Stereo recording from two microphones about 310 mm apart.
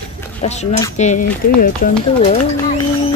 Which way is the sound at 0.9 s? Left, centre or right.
Left.